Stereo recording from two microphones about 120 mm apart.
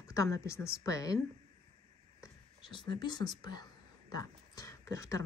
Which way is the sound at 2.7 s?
40° left (ahead or behind).